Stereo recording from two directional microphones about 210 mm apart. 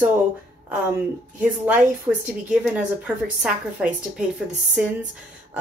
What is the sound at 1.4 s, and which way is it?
Speech, 5° right (ahead or behind).